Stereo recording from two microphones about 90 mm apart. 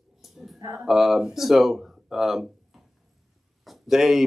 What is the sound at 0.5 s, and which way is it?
Speech, 40° right (ahead or behind).